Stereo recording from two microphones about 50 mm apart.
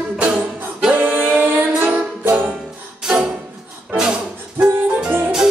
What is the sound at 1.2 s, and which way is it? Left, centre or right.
Music, right.